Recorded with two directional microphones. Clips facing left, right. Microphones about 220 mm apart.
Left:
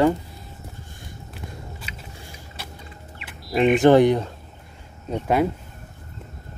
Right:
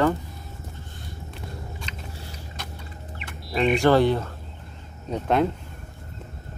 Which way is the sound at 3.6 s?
20° left (ahead or behind).